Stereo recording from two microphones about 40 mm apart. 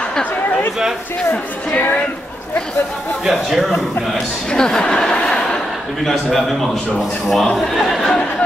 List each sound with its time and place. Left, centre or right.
3.3 s a man's voice: centre
4.5 s a man's voice: centre